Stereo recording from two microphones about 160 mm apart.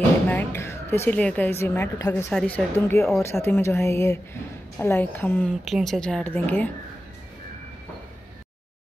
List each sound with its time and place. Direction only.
0.3 s a woman's voice: 10° left (ahead or behind)
2.3 s a woman's voice: 10° left (ahead or behind)
5.5 s speech: centre (ahead or behind)